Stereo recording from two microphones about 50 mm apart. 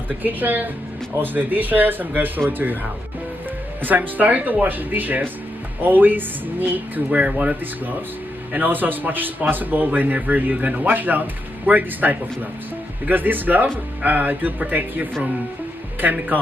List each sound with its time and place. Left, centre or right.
0.1 s speech: right
7.1 s speech: right
8.5 s speech: right